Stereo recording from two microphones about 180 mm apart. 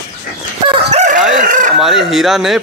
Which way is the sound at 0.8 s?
40° right (ahead or behind).